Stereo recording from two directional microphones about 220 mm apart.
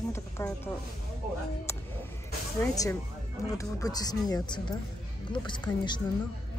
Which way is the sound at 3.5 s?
15° left (ahead or behind).